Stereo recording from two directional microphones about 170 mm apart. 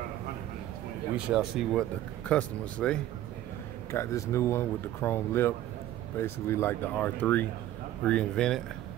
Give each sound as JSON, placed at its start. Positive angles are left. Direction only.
{"t": 1.1, "sound": "speech", "side_deg": -5}
{"t": 3.9, "sound": "speech", "side_deg": 15}